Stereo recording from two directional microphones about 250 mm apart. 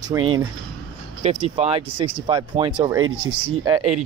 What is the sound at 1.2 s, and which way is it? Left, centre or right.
Speech, right.